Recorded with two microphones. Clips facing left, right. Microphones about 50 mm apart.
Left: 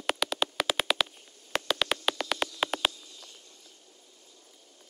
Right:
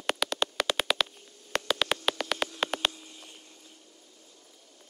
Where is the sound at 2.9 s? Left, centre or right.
Right.